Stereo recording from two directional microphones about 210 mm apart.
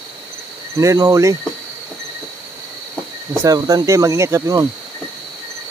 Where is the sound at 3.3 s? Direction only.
15° right (ahead or behind).